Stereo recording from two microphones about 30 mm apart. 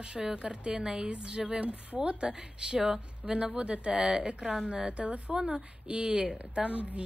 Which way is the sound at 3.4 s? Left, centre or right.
Right.